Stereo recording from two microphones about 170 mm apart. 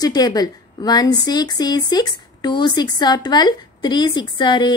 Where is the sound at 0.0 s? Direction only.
20° left (ahead or behind).